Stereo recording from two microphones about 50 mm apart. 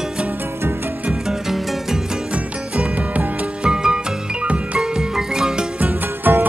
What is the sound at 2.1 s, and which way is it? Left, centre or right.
Music, centre.